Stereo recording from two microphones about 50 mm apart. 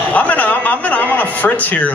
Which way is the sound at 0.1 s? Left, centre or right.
Left.